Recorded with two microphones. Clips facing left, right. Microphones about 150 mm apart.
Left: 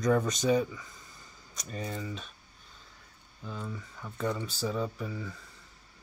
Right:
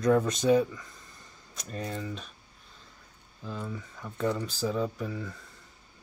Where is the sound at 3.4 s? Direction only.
Centre (ahead or behind).